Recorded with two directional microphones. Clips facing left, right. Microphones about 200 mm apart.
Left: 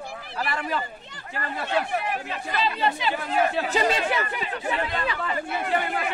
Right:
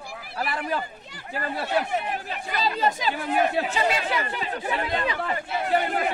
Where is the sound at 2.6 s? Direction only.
40° right (ahead or behind).